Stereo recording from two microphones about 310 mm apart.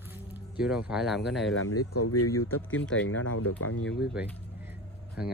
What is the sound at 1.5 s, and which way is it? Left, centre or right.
Speech, left.